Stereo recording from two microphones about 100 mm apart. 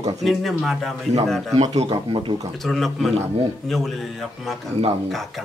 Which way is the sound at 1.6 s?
90° right.